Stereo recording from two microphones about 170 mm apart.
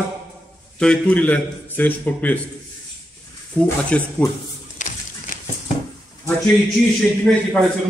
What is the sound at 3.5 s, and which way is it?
Speech, 5° left (ahead or behind).